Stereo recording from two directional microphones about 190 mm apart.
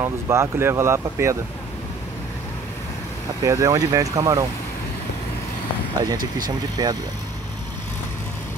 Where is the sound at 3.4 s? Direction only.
15° right (ahead or behind).